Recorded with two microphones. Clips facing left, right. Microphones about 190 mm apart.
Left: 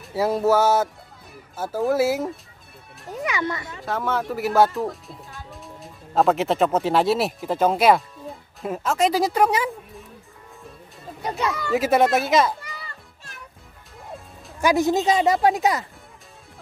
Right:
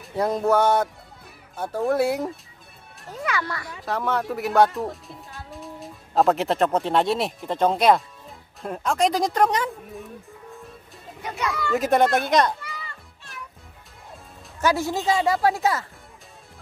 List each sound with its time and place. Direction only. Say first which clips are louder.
0.0 s speech: left 2 dB; 5° left (ahead or behind)
3.1 s speech: left 2 dB; 15° left (ahead or behind)
3.8 s speech: even; centre (ahead or behind)
11.2 s speech: left 3 dB; 30° left (ahead or behind)
11.5 s speech: even; centre (ahead or behind)
13.3 s music: right 4 dB; centre (ahead or behind)
14.6 s speech: left 4 dB; 15° left (ahead or behind)